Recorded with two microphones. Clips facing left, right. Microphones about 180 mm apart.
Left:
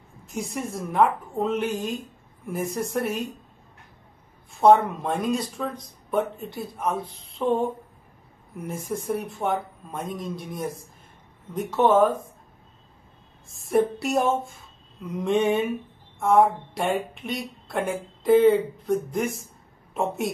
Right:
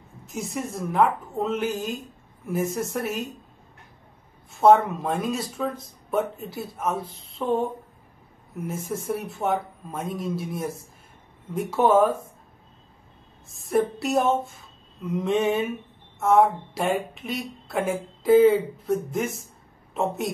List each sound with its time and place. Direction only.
0.3 s a woman's voice: centre (ahead or behind)
4.5 s a woman's voice: centre (ahead or behind)
8.6 s a woman's voice: centre (ahead or behind)
13.5 s a woman's voice: centre (ahead or behind)